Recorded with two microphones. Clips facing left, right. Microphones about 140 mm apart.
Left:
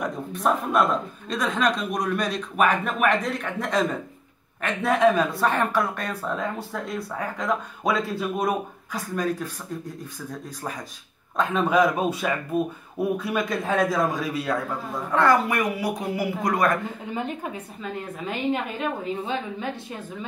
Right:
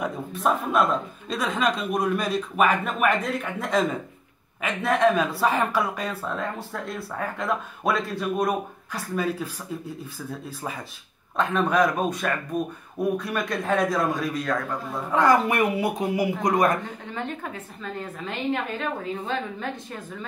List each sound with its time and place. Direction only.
0.0 s speech: centre (ahead or behind)
15.0 s a woman's voice: 15° right (ahead or behind)
17.0 s a woman's voice: 10° left (ahead or behind)